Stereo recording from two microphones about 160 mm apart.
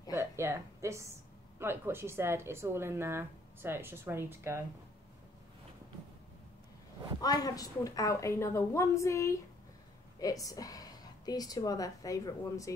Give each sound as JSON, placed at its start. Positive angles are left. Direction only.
{"t": 0.1, "sound": "a sound", "side_deg": -15}
{"t": 1.6, "sound": "speech", "side_deg": -15}
{"t": 7.2, "sound": "a woman's voice", "side_deg": 25}